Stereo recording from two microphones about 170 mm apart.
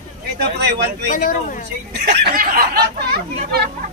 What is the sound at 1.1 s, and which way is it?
Speech, 50° left (ahead or behind).